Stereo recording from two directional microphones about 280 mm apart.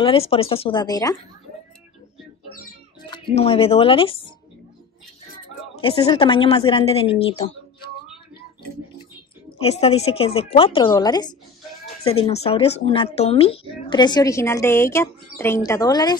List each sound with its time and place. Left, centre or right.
0.0 s a woman's voice: centre
3.1 s speech: centre
5.8 s a woman's voice: centre
9.6 s a woman's voice: left